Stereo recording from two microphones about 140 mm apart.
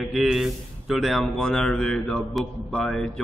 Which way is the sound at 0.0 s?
Centre (ahead or behind).